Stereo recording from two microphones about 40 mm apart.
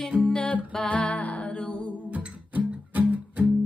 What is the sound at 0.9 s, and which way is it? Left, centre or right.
Music, left.